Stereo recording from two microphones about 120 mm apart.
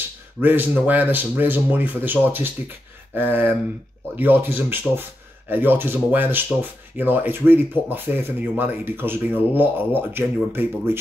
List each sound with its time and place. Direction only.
0.4 s speech: 15° right (ahead or behind)